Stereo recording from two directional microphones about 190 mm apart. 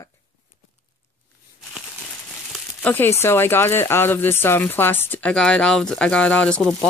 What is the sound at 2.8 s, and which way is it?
Speech, 10° left (ahead or behind).